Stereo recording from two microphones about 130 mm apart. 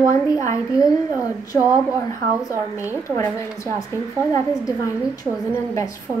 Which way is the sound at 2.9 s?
20° left (ahead or behind).